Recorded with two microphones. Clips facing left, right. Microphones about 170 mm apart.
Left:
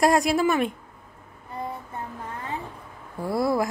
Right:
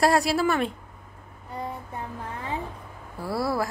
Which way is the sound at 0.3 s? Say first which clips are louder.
Left 2 dB; 15° left (ahead or behind).